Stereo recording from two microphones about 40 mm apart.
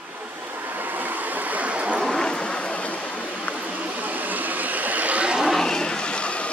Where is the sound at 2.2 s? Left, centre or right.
Left.